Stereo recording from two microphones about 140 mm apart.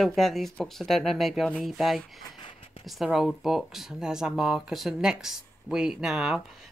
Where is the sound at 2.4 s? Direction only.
40° left (ahead or behind).